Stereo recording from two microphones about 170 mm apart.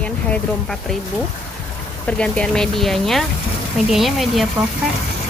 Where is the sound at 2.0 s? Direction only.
5° left (ahead or behind).